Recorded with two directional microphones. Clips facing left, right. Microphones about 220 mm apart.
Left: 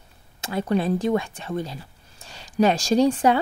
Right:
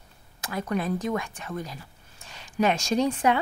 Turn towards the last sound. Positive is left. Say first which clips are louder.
# left 5 dB
turn(degrees=35)  # may be behind; listen again after turning